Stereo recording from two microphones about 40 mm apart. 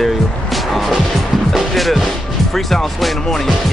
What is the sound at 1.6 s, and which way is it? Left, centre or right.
Speech, centre.